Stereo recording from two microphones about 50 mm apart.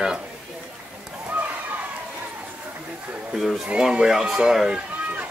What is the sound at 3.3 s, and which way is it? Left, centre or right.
Speech, centre.